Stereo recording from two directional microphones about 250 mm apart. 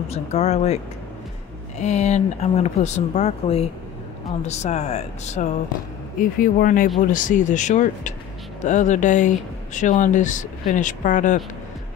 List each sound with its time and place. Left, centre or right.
0.1 s speech: left
1.8 s speech: left